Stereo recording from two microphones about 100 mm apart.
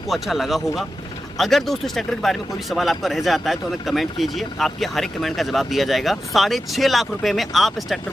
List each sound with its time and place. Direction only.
0.1 s speech: centre (ahead or behind)